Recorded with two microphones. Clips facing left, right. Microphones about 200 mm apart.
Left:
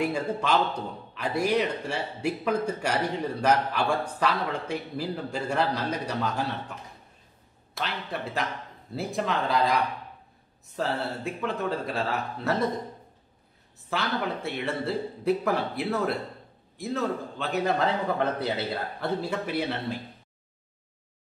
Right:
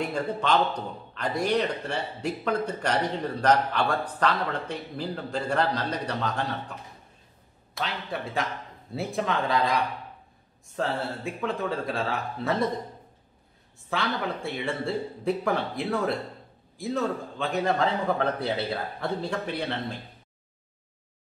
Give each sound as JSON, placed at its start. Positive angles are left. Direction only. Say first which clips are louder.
{"t": 0.0, "sound": "a man's voice", "louder": "left 1 dB", "side_deg": 5}
{"t": 7.7, "sound": "a man's voice", "louder": "right 1 dB", "side_deg": 0}
{"t": 10.8, "sound": "a man's voice", "louder": "even", "side_deg": 0}
{"t": 13.8, "sound": "a man's voice", "louder": "even", "side_deg": 0}